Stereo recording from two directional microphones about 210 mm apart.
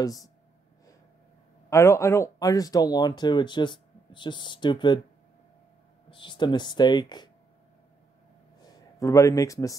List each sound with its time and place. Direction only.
0.0 s speech: 15° left (ahead or behind)
1.7 s speech: 15° left (ahead or behind)
6.0 s speech: 20° left (ahead or behind)
8.6 s speech: 15° left (ahead or behind)